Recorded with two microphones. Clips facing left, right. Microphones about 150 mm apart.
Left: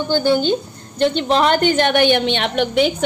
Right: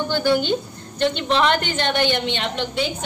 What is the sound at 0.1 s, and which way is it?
A woman's voice, 30° left (ahead or behind).